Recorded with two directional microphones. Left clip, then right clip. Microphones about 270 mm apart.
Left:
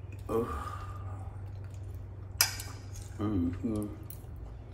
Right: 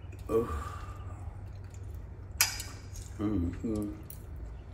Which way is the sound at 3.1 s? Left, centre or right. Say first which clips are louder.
Even; centre.